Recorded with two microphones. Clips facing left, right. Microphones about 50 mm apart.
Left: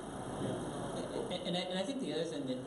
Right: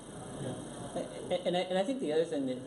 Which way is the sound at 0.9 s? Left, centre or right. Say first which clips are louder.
Right 8 dB; centre.